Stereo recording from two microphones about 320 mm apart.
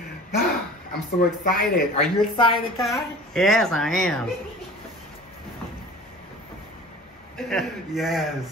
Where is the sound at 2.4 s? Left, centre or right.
Centre.